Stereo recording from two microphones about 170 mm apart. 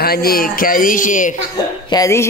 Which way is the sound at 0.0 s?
65° left (ahead or behind).